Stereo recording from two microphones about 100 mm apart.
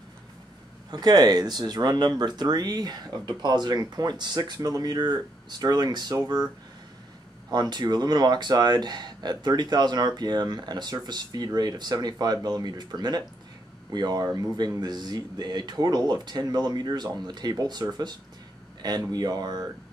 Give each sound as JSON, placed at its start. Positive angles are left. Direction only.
{"t": 0.9, "sound": "speech", "side_deg": -45}
{"t": 7.5, "sound": "speech", "side_deg": -45}